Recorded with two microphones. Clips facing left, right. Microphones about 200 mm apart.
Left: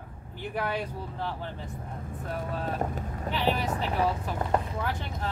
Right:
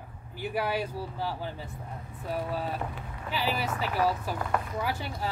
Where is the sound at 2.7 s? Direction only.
45° left (ahead or behind).